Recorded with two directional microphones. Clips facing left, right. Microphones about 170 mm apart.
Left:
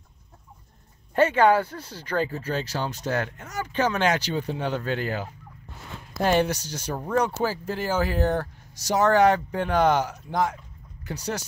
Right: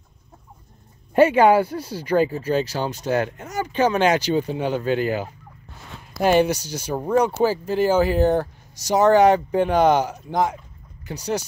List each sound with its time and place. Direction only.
1.1 s speech: 10° right (ahead or behind)